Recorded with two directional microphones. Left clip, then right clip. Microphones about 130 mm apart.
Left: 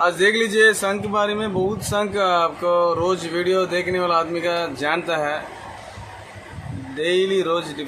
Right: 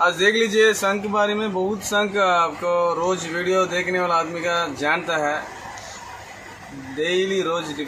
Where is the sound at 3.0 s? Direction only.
30° left (ahead or behind).